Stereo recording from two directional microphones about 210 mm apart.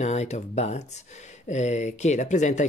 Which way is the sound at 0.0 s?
30° left (ahead or behind).